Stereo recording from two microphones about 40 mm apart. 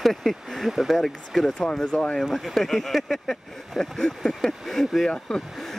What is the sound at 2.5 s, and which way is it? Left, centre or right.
Speech, centre.